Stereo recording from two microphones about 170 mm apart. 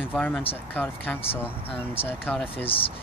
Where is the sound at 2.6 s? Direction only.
30° left (ahead or behind).